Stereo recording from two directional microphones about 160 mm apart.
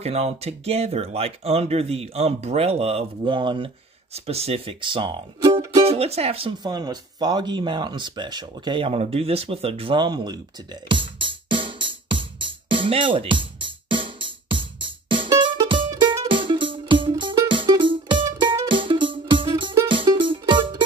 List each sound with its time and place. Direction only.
0.0 s speech: 40° right (ahead or behind); by 5.9 s 25° right (ahead or behind)
5.9 s music: 40° right (ahead or behind)